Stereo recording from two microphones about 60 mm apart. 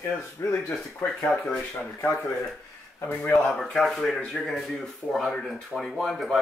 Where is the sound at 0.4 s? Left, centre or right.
Left.